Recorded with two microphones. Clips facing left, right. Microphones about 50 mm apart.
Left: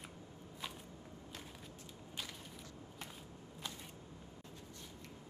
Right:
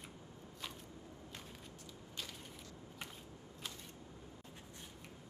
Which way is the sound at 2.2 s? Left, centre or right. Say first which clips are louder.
Left 1 dB; centre.